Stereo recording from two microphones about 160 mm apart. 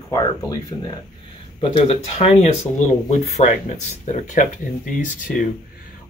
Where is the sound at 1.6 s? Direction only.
35° left (ahead or behind).